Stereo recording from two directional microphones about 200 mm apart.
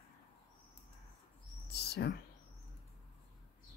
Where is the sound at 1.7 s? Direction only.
55° left (ahead or behind).